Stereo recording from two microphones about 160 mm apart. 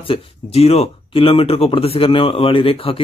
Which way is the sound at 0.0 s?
35° left (ahead or behind).